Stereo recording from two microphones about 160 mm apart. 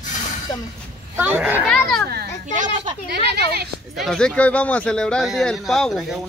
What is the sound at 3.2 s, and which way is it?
Speech, 90° right.